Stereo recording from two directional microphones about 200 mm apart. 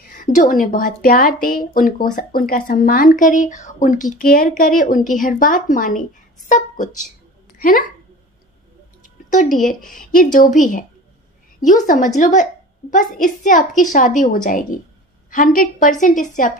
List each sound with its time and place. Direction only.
0.0 s speech: 40° left (ahead or behind)
9.3 s speech: 40° left (ahead or behind)
11.7 s a woman's voice: 40° left (ahead or behind)